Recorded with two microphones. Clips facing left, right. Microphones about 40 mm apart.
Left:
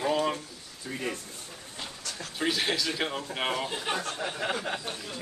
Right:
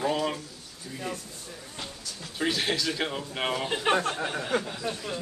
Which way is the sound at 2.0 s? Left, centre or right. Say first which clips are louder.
Left 2 dB; left.